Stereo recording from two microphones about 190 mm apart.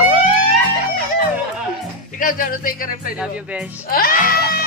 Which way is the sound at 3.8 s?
50° left (ahead or behind).